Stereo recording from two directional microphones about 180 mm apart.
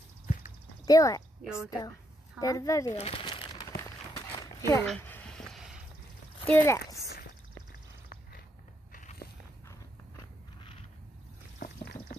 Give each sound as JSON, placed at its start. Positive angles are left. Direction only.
{"t": 0.8, "sound": "speech", "side_deg": 20}
{"t": 1.4, "sound": "a woman's voice", "side_deg": -5}
{"t": 1.7, "sound": "speech", "side_deg": 20}
{"t": 2.9, "sound": "crumpling", "side_deg": 30}
{"t": 4.8, "sound": "a sound", "side_deg": 10}
{"t": 6.4, "sound": "speech", "side_deg": 15}
{"t": 8.9, "sound": "biting", "side_deg": 50}
{"t": 10.6, "sound": "a sound", "side_deg": 30}
{"t": 11.6, "sound": "clip-clop", "side_deg": 55}